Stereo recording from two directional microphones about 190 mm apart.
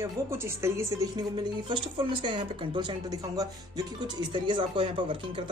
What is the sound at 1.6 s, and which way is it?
Speech, 25° right (ahead or behind).